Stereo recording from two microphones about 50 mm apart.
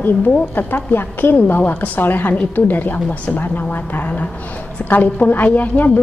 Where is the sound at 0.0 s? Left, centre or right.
Left.